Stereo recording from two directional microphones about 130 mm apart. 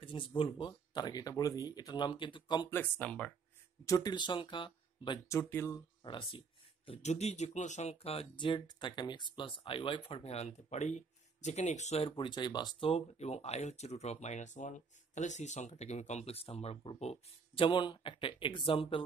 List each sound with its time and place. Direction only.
0.0 s speech: 40° left (ahead or behind)
2.7 s speech: 15° left (ahead or behind)
3.8 s speech: 25° left (ahead or behind)
5.3 s speech: 20° left (ahead or behind)
6.0 s speech: 40° left (ahead or behind)
6.9 s speech: 60° left (ahead or behind)
12.2 s speech: 35° left (ahead or behind)
12.9 s speech: 55° left (ahead or behind)
17.6 s speech: 35° left (ahead or behind)